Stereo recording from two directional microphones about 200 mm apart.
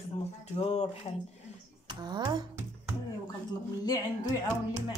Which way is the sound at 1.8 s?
20° right (ahead or behind).